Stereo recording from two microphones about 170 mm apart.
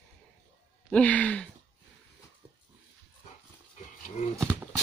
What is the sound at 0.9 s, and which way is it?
Speech, 10° left (ahead or behind).